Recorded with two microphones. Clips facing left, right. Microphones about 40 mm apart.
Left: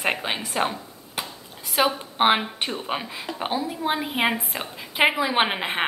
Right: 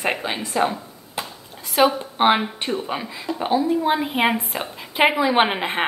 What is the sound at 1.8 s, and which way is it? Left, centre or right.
A woman's voice, centre.